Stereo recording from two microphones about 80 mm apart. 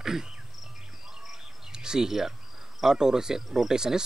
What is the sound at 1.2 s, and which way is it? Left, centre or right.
Insect, centre.